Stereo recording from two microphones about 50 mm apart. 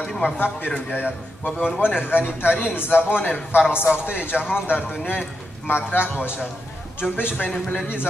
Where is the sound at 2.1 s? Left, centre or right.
Left.